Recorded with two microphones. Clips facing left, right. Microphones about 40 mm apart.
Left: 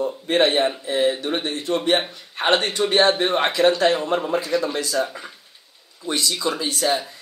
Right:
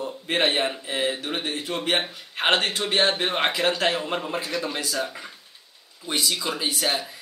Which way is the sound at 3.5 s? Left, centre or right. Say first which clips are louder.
Left 6 dB; centre.